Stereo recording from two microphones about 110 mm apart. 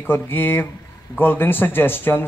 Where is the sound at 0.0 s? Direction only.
20° left (ahead or behind).